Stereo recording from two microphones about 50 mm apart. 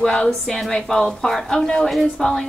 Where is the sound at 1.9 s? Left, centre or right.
Centre.